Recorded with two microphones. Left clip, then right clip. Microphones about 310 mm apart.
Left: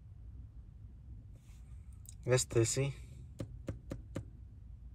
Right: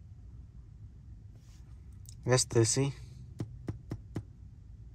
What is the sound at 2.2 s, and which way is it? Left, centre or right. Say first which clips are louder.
Speech: right 4 dB; centre.